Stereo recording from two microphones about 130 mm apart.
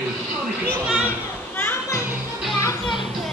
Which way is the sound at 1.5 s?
15° left (ahead or behind).